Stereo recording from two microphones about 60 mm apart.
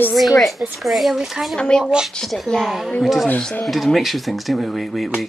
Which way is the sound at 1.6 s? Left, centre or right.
Centre.